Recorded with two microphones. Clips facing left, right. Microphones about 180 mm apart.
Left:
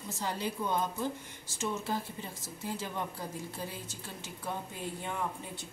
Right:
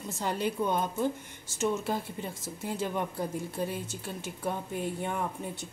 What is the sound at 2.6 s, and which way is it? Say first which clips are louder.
A woman's voice: right 5 dB; 55° right (ahead or behind).